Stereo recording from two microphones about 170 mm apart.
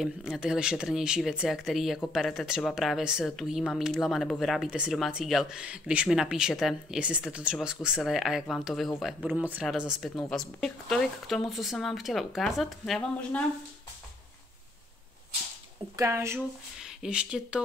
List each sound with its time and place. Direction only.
0.0 s speech: centre (ahead or behind)
16.0 s speech: 15° right (ahead or behind)
16.3 s speech: 5° right (ahead or behind)